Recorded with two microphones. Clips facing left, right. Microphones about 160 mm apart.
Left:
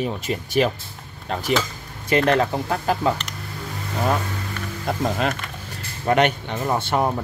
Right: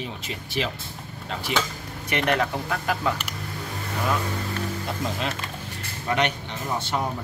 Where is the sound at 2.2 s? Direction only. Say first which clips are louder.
Left 5 dB; 30° left (ahead or behind).